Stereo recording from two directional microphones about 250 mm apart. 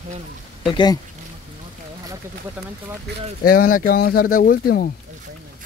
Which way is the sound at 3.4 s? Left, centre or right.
Left.